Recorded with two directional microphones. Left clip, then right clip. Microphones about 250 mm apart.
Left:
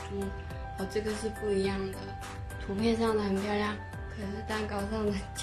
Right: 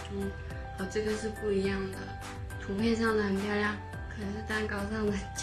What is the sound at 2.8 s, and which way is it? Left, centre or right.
Speech, centre.